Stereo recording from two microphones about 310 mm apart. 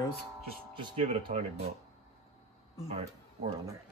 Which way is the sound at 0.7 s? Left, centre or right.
Centre.